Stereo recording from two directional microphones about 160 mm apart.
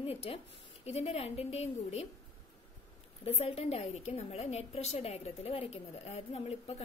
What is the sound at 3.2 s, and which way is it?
Speech, 40° left (ahead or behind).